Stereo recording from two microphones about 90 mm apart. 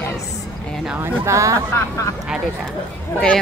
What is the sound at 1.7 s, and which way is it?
Speech, 35° left (ahead or behind).